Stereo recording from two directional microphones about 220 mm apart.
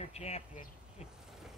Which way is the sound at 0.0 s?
30° left (ahead or behind).